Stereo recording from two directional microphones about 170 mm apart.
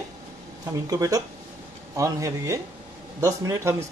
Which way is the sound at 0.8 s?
20° right (ahead or behind).